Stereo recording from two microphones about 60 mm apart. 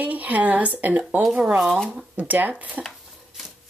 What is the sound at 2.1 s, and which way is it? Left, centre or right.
Speech, right.